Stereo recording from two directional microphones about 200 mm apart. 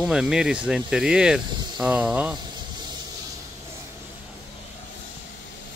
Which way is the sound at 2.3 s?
20° right (ahead or behind).